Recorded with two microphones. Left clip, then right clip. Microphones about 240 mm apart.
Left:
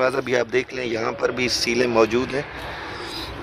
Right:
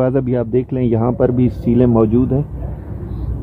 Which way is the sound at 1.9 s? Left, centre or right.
Left.